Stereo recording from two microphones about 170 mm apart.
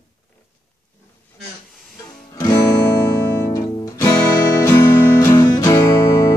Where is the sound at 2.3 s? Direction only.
20° left (ahead or behind).